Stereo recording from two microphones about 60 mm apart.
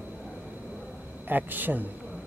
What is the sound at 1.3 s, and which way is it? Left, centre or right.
Speech, right.